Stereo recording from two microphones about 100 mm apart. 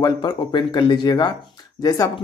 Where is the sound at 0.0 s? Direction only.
50° left (ahead or behind).